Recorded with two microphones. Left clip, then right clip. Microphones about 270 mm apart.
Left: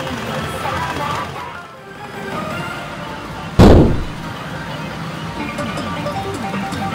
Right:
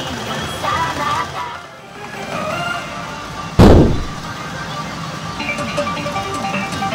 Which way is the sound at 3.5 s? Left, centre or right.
Centre.